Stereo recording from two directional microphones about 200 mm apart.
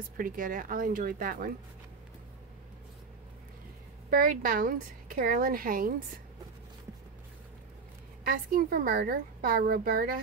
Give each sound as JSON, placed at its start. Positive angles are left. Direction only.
{"t": 0.2, "sound": "a woman's voice", "side_deg": -45}
{"t": 4.1, "sound": "a woman's voice", "side_deg": -45}
{"t": 8.2, "sound": "a woman's voice", "side_deg": -45}